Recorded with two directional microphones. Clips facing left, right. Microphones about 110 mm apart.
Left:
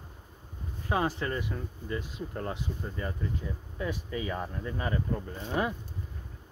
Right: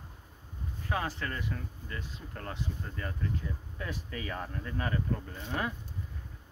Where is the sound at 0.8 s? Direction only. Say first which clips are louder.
Left 5 dB; 20° left (ahead or behind).